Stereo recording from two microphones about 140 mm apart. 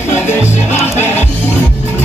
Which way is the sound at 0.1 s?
15° left (ahead or behind).